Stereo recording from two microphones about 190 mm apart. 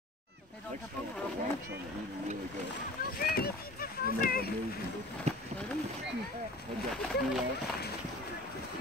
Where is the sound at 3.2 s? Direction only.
55° left (ahead or behind).